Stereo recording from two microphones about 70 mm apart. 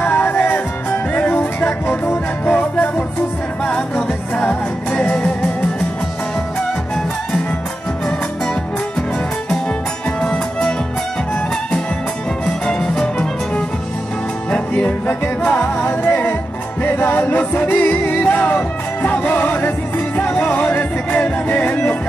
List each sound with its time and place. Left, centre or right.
0.0 s music: left
10.2 s music: centre
12.4 s music: centre; by 21.9 s left